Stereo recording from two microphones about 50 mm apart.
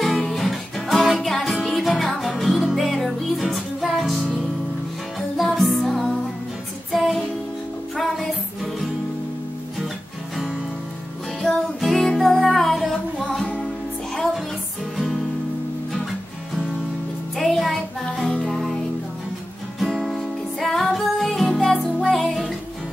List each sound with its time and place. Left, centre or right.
0.0 s music: centre
1.1 s music: centre
5.4 s music: centre
11.8 s music: centre
17.4 s music: centre
19.9 s music: centre